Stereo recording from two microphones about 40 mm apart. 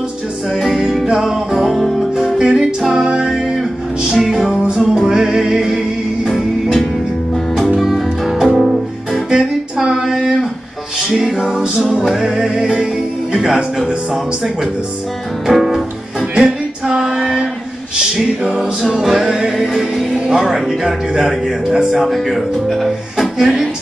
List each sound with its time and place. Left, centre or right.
0.6 s music: centre
2.3 s music: centre
3.0 s music: right
4.2 s music: centre
6.3 s music: centre
10.0 s a sound: centre
11.1 s music: centre
11.9 s speech: centre
15.4 s music: centre
16.3 s female singing: centre
18.6 s speech: centre